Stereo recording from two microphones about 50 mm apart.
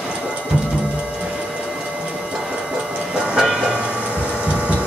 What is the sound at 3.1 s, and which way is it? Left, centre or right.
Train, centre.